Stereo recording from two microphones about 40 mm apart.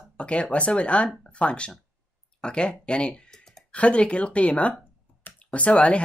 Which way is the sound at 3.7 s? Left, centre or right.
Left.